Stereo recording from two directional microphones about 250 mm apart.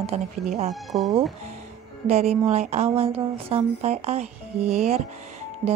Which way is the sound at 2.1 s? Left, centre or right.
Right.